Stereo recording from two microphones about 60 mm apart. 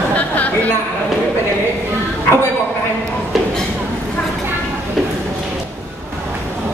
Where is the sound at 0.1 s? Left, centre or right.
Left.